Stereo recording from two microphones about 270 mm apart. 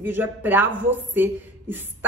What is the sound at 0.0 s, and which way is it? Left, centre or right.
A woman's voice, centre.